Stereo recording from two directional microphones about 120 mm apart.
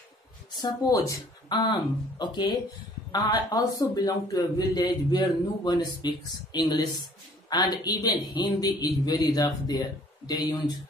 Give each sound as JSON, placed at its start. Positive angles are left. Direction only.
{"t": 0.6, "sound": "a man's voice", "side_deg": 30}